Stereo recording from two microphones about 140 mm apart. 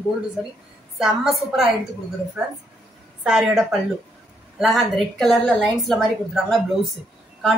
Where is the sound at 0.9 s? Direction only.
Centre (ahead or behind).